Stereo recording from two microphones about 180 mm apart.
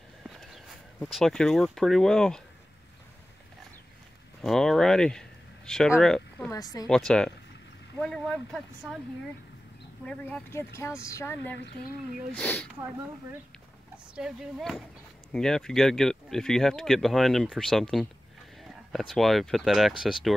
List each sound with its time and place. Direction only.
0.2 s speech: centre (ahead or behind)
4.4 s speech: centre (ahead or behind)
6.5 s a woman's voice: 20° left (ahead or behind)
7.1 s speech: centre (ahead or behind)
10.0 s a woman's voice: 5° left (ahead or behind)
14.1 s speech: 5° right (ahead or behind)